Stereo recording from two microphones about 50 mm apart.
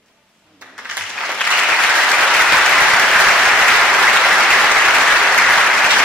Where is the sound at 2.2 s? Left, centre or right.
Centre.